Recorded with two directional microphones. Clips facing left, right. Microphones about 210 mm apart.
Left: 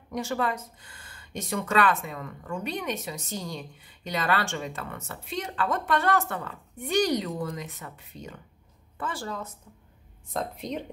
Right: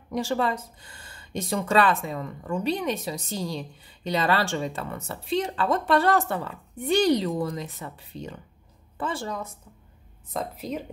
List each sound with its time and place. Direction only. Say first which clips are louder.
0.1 s speech: right 3 dB; 30° right (ahead or behind); by 9.6 s 15° right (ahead or behind)
10.3 s speech: right 1 dB; 5° right (ahead or behind)